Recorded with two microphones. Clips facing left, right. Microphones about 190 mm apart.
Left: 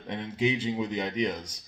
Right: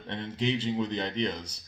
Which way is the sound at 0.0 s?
10° left (ahead or behind).